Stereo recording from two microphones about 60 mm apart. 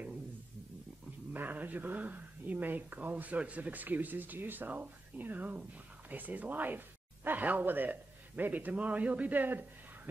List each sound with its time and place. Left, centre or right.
1.3 s speech: right